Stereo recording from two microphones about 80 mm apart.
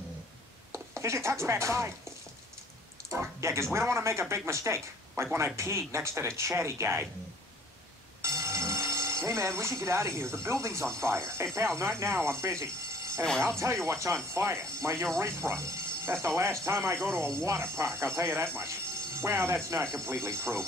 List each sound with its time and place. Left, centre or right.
0.7 s speech: right
3.1 s speech: right
8.2 s a sound: right
10.8 s speech: right